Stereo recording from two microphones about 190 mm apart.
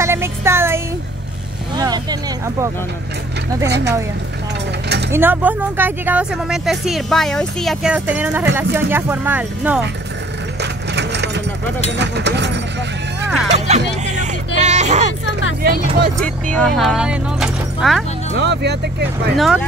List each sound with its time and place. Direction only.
0.0 s a sound: 15° right (ahead or behind)
1.8 s vehicle: 20° right (ahead or behind)
3.6 s speech: 65° right (ahead or behind)
4.8 s mechanisms: 60° right (ahead or behind)
5.1 s speech: 10° right (ahead or behind)
10.6 s wood: 65° right (ahead or behind)
11.9 s speech: 65° right (ahead or behind)
13.5 s music: 35° right (ahead or behind)
14.6 s a sound: 35° right (ahead or behind)
15.6 s speech: 50° right (ahead or behind)
16.5 s speech: centre (ahead or behind)
18.3 s speech: 65° right (ahead or behind)
19.3 s speech: centre (ahead or behind)